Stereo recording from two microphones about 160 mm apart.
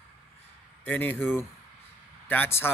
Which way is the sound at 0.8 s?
10° left (ahead or behind).